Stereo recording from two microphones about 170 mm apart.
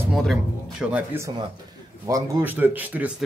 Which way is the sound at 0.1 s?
Centre (ahead or behind).